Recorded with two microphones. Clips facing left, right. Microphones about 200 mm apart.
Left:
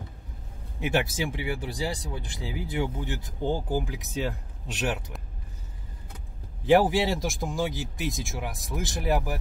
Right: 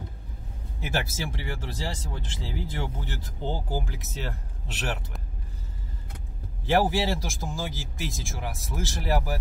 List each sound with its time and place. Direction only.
0.7 s speech: 15° left (ahead or behind)
6.6 s speech: 15° left (ahead or behind)